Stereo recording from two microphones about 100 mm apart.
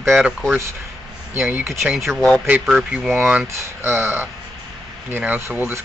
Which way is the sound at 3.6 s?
25° right (ahead or behind).